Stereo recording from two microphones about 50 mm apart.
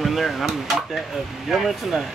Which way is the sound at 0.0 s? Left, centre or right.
Centre.